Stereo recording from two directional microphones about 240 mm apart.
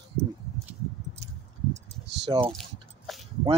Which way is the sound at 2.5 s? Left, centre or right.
Centre.